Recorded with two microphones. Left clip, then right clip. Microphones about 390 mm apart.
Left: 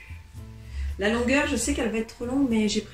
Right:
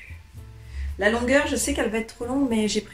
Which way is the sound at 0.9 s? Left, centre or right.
Centre.